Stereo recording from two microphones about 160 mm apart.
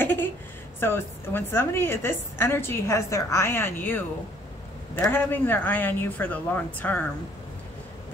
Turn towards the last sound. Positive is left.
turn(degrees=10)  # may be behind; listen again after turning